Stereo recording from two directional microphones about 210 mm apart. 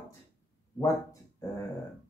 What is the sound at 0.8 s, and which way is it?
Speech, 15° left (ahead or behind).